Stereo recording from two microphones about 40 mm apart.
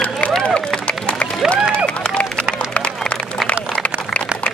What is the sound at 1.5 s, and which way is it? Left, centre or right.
Crowd, left.